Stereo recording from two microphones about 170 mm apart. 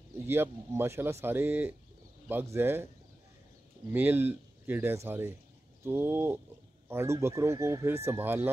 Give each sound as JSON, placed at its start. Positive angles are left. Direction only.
{"t": 0.1, "sound": "speech", "side_deg": -15}
{"t": 3.9, "sound": "speech", "side_deg": -10}